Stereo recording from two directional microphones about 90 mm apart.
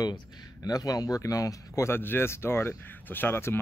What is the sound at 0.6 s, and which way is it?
Speech, 45° left (ahead or behind).